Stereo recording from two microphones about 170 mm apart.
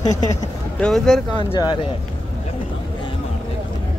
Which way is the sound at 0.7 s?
5° left (ahead or behind).